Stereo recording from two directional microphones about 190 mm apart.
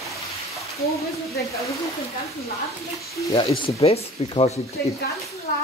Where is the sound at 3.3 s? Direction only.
25° left (ahead or behind).